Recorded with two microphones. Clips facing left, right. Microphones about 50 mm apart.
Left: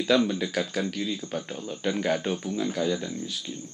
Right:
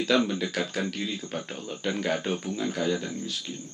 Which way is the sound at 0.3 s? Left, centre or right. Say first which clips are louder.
Left 1 dB; centre.